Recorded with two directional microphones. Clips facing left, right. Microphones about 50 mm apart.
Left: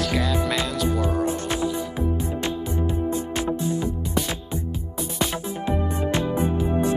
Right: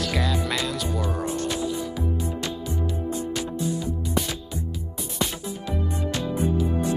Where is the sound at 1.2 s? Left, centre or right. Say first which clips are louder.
Left 3 dB; left.